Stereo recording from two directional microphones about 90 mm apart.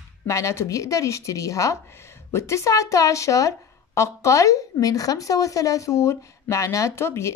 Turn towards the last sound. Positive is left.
turn(degrees=30)  # may be behind; listen again after turning